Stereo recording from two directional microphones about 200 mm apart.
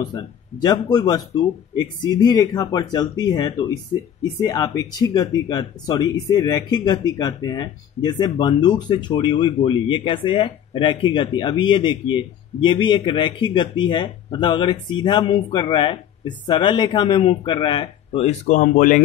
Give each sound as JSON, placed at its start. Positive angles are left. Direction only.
{"t": 0.1, "sound": "speech", "side_deg": 20}